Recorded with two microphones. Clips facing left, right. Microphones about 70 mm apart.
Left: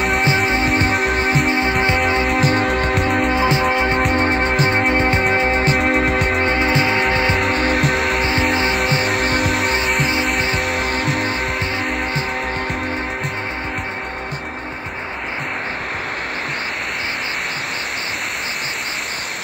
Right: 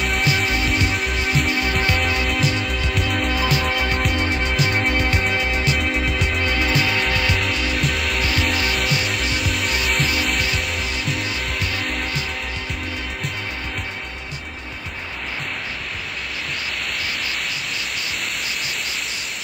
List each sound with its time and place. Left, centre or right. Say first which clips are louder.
0.2 s music: left 4 dB; left
0.9 s music: left 6 dB; left
1.2 s music: left 4 dB; left
2.2 s music: left 6 dB; left
3.3 s music: left 5 dB; left
5.8 s music: left 6 dB; left
6.4 s music: left 4 dB; left
7.4 s music: left 6 dB; left
8.2 s music: left 4 dB; left
9.7 s music: left 4 dB; left
10.6 s music: left 6 dB; left